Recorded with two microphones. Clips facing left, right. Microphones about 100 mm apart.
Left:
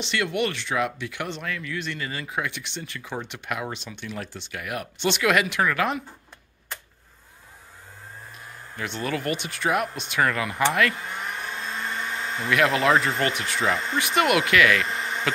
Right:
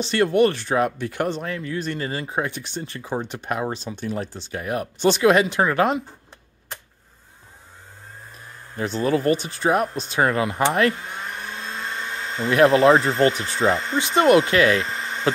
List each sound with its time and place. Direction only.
0.0 s speech: 40° right (ahead or behind)
8.7 s speech: 35° right (ahead or behind)
12.4 s speech: 30° right (ahead or behind)
15.3 s insect: 30° right (ahead or behind)